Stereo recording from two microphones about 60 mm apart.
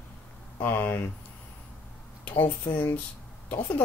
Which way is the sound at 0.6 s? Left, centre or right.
Left.